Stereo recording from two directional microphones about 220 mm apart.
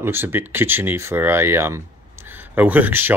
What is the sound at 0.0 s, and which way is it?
Speech, 10° right (ahead or behind).